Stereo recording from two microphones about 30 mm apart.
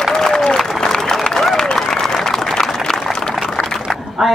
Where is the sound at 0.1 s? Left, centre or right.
Centre.